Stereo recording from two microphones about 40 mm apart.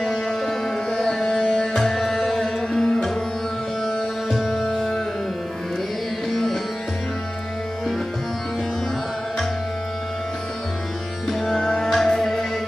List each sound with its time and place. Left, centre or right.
0.0 s music: centre
1.1 s music: centre
2.7 s music: centre
3.8 s music: centre
4.5 s music: centre
6.3 s music: centre
11.4 s music: centre